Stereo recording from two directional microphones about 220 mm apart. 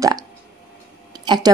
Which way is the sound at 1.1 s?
20° right (ahead or behind).